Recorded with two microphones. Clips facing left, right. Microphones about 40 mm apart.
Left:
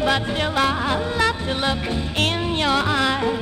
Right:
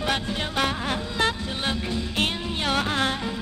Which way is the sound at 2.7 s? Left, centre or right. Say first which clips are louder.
Left 3 dB; left.